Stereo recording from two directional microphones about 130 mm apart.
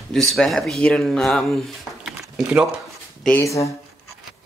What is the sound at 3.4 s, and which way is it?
Speech, 25° left (ahead or behind).